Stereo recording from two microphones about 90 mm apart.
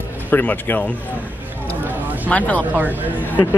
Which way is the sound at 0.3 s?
20° left (ahead or behind).